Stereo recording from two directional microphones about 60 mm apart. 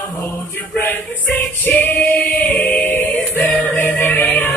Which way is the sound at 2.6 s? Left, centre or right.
Left.